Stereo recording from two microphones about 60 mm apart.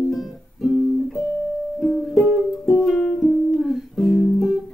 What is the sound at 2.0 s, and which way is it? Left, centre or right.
Music, centre.